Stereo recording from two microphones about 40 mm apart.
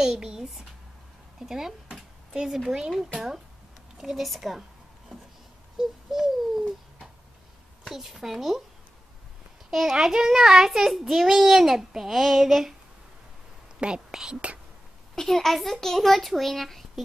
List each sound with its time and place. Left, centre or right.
0.0 s a child's voice: centre
5.8 s bird: centre
7.9 s a child's voice: centre
9.7 s a child's voice: centre
13.7 s a woman's voice: right
15.1 s a child's voice: centre